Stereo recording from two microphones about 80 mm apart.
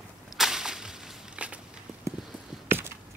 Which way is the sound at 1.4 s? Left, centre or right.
Centre.